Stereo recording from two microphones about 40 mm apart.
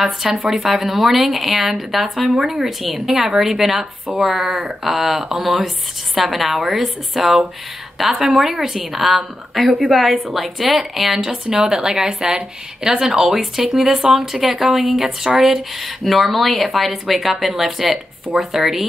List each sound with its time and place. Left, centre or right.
0.0 s a woman's voice: centre
11.4 s a woman's voice: right
11.7 s a woman's voice: centre